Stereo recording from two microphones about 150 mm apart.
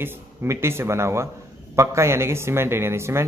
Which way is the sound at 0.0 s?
15° right (ahead or behind).